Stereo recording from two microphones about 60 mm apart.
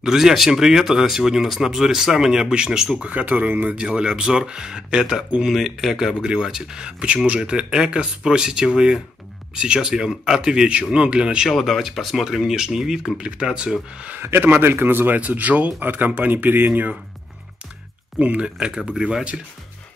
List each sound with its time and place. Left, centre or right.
0.0 s speech: centre
3.1 s speech: right
3.7 s speech: centre
11.4 s speech: centre
14.2 s speech: right
18.2 s speech: centre